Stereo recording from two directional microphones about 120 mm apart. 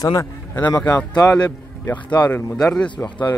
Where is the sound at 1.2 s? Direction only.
30° left (ahead or behind).